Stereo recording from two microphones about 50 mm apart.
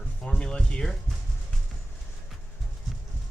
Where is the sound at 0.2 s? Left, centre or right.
Left.